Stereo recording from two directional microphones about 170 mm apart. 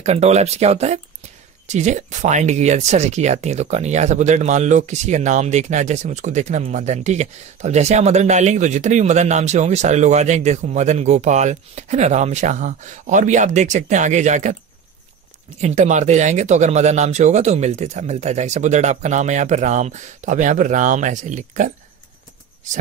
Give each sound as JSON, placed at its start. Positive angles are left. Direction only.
{"t": 0.0, "sound": "speech", "side_deg": -40}
{"t": 15.6, "sound": "speech", "side_deg": -45}